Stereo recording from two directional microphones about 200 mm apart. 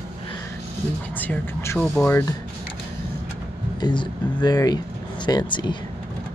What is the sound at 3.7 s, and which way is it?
Speech, 20° left (ahead or behind).